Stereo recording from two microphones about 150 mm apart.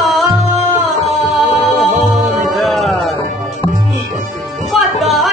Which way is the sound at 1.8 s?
Centre (ahead or behind).